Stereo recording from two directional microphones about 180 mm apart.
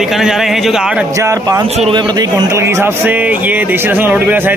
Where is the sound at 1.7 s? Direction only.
35° right (ahead or behind).